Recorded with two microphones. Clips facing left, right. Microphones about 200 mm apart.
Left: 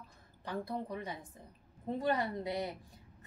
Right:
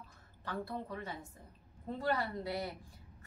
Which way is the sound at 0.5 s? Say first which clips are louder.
Left 2 dB; 15° left (ahead or behind).